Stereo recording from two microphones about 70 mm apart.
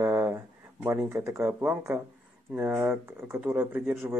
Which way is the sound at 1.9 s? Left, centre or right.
Right.